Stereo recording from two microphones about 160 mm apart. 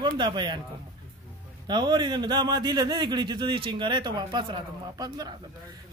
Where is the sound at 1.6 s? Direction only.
25° right (ahead or behind).